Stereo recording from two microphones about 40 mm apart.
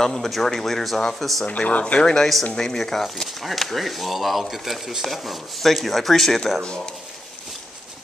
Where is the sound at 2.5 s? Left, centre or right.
Centre.